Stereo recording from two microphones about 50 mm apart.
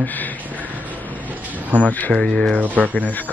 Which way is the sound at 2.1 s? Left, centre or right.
Centre.